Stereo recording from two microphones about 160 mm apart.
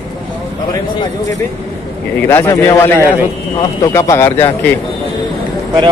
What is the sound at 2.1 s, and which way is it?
A man's voice, 15° left (ahead or behind).